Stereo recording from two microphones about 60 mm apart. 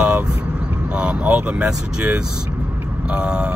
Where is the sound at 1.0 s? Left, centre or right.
Centre.